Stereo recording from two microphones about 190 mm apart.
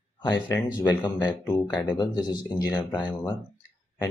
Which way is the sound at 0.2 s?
20° left (ahead or behind).